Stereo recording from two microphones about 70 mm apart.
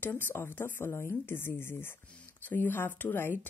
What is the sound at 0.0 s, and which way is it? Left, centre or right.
Speech, left.